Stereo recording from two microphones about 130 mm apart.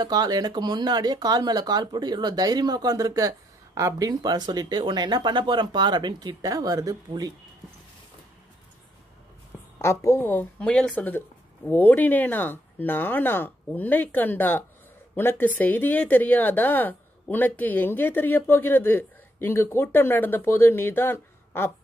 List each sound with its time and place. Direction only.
0.0 s speech: 30° right (ahead or behind)
9.8 s speech: 20° left (ahead or behind)